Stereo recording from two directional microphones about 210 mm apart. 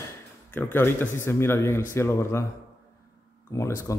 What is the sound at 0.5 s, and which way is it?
Speech, 10° left (ahead or behind).